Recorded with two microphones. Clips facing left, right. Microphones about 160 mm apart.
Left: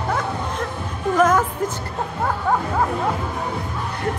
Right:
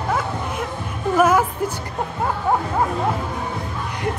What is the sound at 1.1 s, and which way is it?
Music, 10° right (ahead or behind).